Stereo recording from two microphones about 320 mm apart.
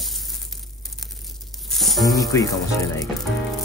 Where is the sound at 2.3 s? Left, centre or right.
Centre.